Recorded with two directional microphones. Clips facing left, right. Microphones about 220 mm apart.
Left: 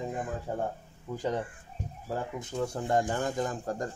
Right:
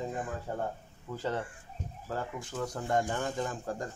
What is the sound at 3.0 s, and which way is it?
Speech, 40° left (ahead or behind).